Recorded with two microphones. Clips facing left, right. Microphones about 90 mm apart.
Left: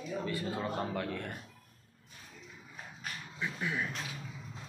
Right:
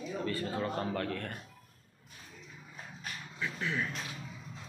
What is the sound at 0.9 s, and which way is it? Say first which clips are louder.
Speech: right 1 dB; 15° left (ahead or behind).